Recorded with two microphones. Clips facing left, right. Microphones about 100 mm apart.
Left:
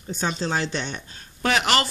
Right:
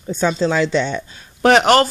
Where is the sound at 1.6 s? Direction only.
45° right (ahead or behind).